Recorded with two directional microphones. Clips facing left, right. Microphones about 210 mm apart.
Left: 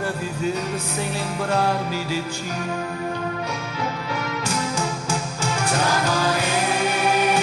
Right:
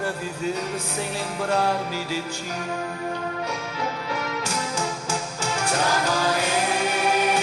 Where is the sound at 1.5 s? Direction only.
35° right (ahead or behind).